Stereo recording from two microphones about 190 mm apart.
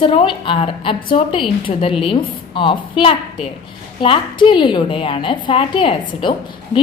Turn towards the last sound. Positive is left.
turn(degrees=25)  # may be behind; listen again after turning